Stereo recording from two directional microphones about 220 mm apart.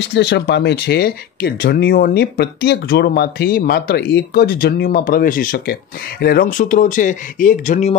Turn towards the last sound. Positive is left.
turn(degrees=30)  # may be behind; listen again after turning